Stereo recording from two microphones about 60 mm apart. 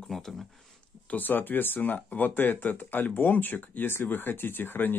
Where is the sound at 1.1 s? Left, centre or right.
Left.